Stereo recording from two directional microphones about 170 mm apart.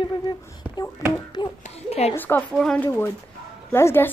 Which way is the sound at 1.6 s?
40° left (ahead or behind).